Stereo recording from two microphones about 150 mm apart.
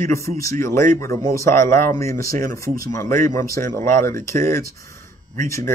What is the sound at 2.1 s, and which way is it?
Speech, 75° right (ahead or behind).